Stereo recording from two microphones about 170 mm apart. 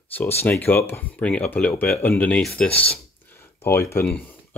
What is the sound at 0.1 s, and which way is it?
Speech, 15° left (ahead or behind).